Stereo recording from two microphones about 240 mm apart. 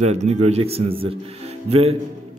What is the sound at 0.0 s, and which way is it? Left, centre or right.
A man's voice, right.